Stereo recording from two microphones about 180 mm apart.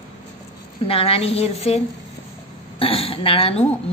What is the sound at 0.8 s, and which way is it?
Speech, 30° left (ahead or behind).